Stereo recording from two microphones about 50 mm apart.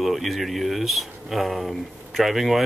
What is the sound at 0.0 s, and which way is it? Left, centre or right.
Speech, centre.